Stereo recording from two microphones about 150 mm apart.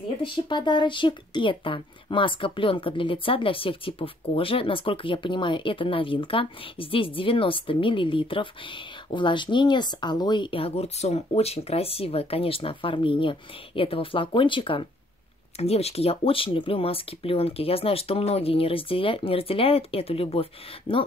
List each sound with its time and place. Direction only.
0.2 s speech: 30° left (ahead or behind)